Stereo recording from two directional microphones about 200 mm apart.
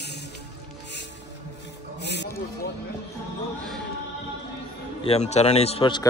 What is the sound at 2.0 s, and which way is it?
Music, 60° left (ahead or behind).